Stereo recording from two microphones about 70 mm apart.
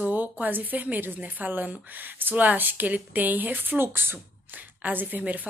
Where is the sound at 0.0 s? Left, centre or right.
Right.